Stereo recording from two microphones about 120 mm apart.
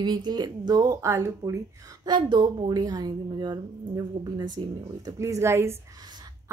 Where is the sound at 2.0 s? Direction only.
40° right (ahead or behind).